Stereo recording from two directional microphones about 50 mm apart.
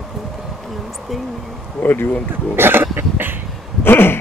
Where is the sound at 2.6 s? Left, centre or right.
Right.